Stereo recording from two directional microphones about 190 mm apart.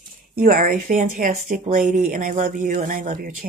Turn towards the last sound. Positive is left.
turn(degrees=-45)  # may be behind; listen again after turning